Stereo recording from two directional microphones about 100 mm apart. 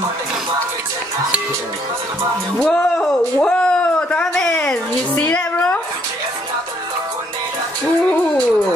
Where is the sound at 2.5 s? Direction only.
10° left (ahead or behind).